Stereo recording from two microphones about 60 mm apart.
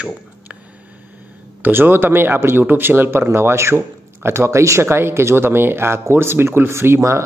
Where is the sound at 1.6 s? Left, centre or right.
Right.